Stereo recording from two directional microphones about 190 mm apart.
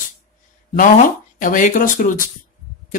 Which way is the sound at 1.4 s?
45° left (ahead or behind).